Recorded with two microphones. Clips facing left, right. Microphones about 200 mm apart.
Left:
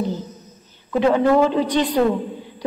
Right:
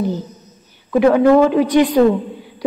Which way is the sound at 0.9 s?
10° right (ahead or behind).